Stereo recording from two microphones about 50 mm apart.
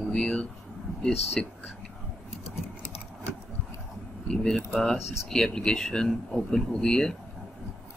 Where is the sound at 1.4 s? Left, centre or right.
Centre.